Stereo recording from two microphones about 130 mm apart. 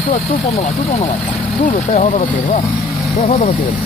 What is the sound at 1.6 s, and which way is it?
Speech, 65° left (ahead or behind).